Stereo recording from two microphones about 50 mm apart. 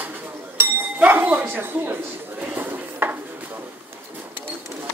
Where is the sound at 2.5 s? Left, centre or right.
Right.